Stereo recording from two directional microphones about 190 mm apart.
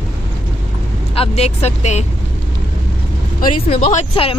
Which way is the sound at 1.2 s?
35° left (ahead or behind).